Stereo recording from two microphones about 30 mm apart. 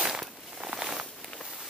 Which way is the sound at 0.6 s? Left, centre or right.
Right.